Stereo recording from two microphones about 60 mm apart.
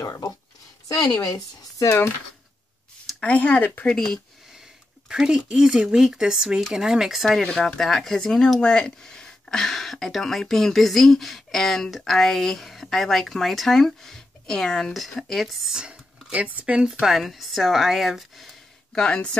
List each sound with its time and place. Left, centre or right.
0.0 s speech: left
3.2 s speech: left
3.8 s speech: centre
5.1 s speech: centre
15.8 s speech: right
16.7 s speech: centre
18.9 s speech: centre